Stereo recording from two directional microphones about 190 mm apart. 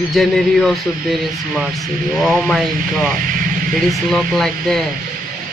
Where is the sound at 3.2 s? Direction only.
45° right (ahead or behind).